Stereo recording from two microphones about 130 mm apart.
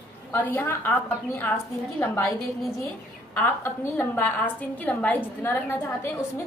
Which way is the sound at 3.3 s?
15° left (ahead or behind).